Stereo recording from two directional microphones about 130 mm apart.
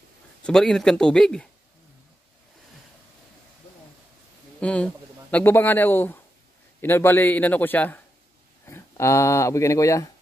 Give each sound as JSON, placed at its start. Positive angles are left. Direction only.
{"t": 0.4, "sound": "speech", "side_deg": 5}
{"t": 4.6, "sound": "a man's voice", "side_deg": 10}